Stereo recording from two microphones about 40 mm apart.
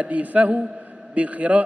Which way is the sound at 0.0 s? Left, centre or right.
Right.